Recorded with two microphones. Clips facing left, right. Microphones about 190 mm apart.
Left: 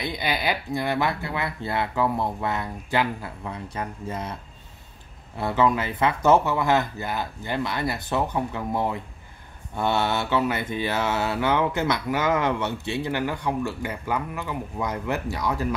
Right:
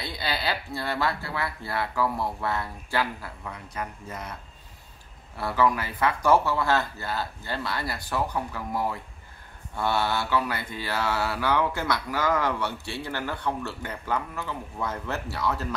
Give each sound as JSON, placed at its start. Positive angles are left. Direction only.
{"t": 0.0, "sound": "mantra", "side_deg": 15}
{"t": 5.4, "sound": "mantra", "side_deg": 20}